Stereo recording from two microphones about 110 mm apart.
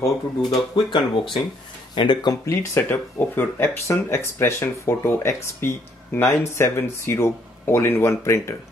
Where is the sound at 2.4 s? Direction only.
25° left (ahead or behind).